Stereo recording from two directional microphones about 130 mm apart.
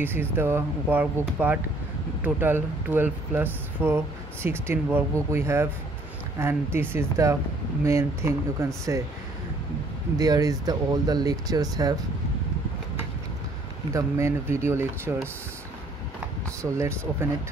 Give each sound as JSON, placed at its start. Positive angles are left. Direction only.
{"t": 0.0, "sound": "speech", "side_deg": -15}
{"t": 10.1, "sound": "speech", "side_deg": -30}
{"t": 13.9, "sound": "speech", "side_deg": -20}